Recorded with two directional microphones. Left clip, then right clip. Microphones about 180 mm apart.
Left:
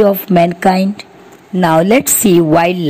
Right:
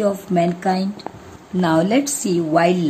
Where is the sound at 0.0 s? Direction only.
35° left (ahead or behind).